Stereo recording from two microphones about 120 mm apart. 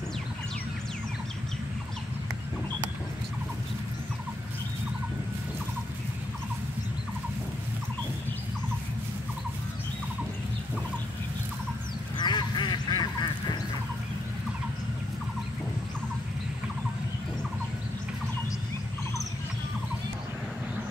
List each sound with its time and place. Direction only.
12.2 s duck: 40° left (ahead or behind)